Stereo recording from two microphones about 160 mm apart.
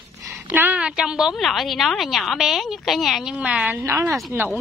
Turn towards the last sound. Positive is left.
turn(degrees=0)  # may be behind; listen again after turning